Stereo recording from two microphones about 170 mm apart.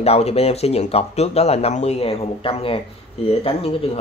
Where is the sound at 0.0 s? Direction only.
35° left (ahead or behind).